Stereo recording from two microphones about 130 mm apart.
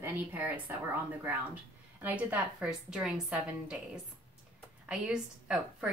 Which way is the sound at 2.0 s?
15° right (ahead or behind).